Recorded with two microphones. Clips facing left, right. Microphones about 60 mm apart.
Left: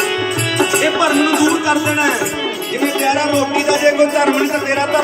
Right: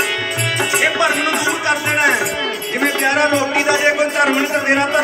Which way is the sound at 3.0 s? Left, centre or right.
Right.